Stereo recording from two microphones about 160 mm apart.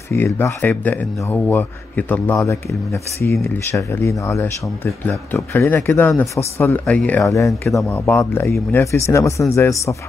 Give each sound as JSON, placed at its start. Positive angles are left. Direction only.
{"t": 0.1, "sound": "speech", "side_deg": 15}